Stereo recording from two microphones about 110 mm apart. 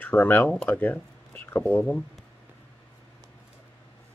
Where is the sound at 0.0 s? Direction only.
15° left (ahead or behind).